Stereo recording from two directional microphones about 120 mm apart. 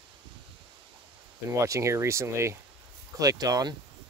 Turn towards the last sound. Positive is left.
turn(degrees=-35)  # may be behind; listen again after turning